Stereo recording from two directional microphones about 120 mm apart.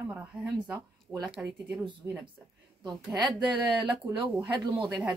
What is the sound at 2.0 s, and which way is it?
Speech, 20° right (ahead or behind).